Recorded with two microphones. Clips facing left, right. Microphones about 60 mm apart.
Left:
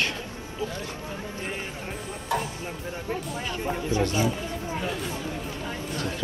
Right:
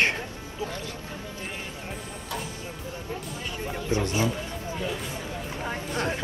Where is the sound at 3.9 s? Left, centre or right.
Right.